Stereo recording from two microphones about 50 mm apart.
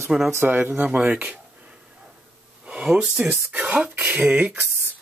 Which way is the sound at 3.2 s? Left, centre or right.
Right.